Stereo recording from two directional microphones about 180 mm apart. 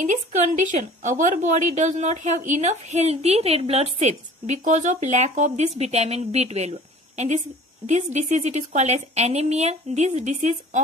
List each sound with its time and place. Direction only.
0.0 s speech: 45° right (ahead or behind)